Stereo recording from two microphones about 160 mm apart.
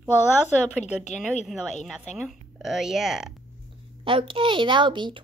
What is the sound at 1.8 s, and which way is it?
Speech, 5° left (ahead or behind).